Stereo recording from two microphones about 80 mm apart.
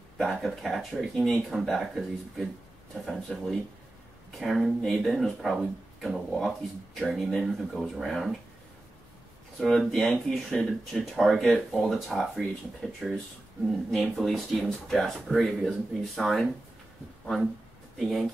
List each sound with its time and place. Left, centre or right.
0.2 s speech: centre
9.6 s speech: centre
17.9 s speech: centre